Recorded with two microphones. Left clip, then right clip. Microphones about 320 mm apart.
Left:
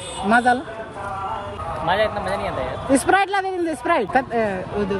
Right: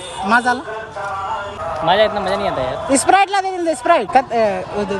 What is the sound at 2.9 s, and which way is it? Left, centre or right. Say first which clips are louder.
Speech: right 4 dB; centre.